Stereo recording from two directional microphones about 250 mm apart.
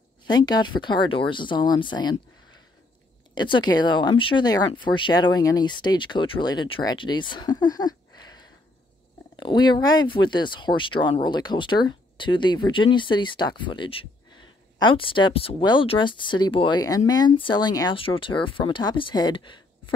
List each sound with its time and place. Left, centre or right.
0.3 s speech: centre